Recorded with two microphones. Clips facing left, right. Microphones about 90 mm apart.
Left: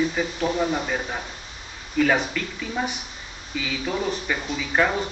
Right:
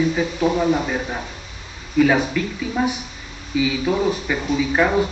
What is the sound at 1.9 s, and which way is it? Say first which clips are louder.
Speech: right 5 dB; 5° right (ahead or behind).